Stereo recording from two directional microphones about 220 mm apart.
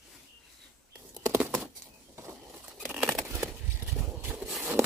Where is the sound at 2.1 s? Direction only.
10° right (ahead or behind).